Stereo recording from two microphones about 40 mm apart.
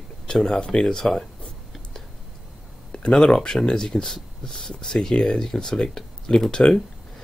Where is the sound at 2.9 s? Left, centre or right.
Left.